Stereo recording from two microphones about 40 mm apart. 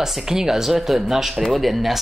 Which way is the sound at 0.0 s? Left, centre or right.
Centre.